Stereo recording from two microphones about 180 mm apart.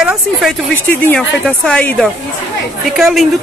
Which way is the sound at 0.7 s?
10° left (ahead or behind).